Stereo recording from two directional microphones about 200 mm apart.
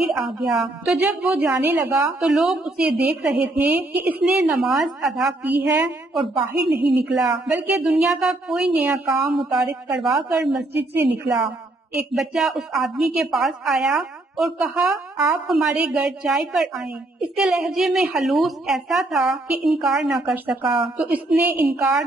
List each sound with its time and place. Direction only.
0.0 s a woman's voice: centre (ahead or behind)
6.3 s a woman's voice: 20° right (ahead or behind)
7.2 s a woman's voice: 5° right (ahead or behind)